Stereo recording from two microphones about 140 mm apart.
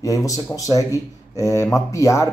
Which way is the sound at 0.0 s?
25° left (ahead or behind).